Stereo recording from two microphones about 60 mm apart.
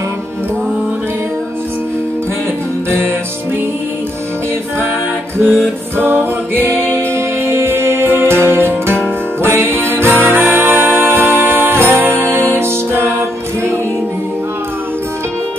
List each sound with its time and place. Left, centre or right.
5.4 s music: left
6.0 s music: right